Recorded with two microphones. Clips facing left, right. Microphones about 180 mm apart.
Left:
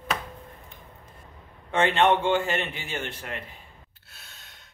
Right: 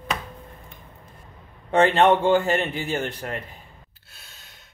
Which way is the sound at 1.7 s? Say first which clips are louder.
Right 4 dB; 40° right (ahead or behind).